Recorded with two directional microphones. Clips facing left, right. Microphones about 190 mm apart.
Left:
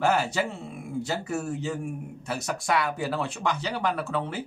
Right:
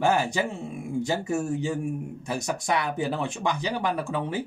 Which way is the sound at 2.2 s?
15° right (ahead or behind).